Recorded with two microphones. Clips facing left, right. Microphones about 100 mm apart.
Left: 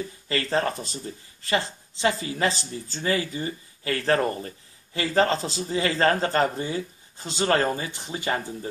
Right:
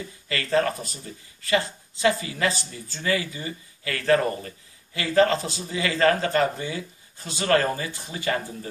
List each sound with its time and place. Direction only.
0.3 s speech: 30° left (ahead or behind)